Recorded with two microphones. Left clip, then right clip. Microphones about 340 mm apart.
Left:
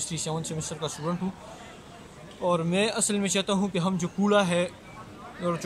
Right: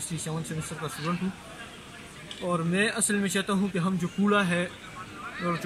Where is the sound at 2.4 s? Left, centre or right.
Centre.